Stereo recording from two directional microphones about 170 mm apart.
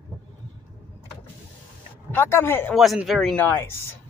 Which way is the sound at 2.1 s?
15° left (ahead or behind).